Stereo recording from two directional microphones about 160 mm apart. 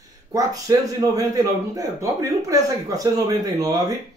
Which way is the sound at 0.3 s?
20° right (ahead or behind).